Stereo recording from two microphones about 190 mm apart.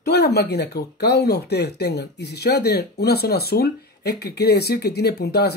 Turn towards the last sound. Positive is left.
turn(degrees=60)  # may be behind; listen again after turning